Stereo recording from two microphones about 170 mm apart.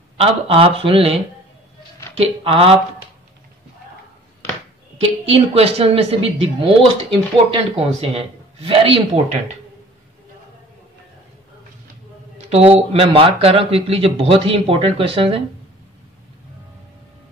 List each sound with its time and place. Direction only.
0.2 s speech: 35° right (ahead or behind)
5.2 s speech: 35° right (ahead or behind)
12.4 s speech: 35° right (ahead or behind)